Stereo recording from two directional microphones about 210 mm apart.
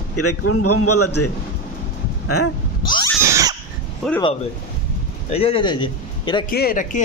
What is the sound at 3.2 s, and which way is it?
Cat, 15° right (ahead or behind).